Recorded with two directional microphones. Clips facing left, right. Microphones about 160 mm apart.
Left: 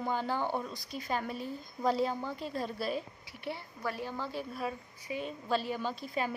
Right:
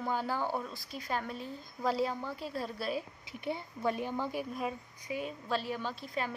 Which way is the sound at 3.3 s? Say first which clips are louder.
Right 3 dB; 20° right (ahead or behind).